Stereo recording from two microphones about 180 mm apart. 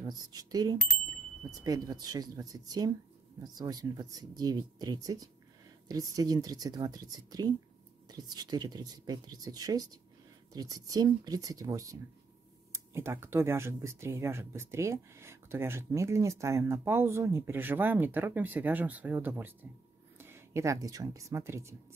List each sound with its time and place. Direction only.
0.0 s speech: 20° right (ahead or behind)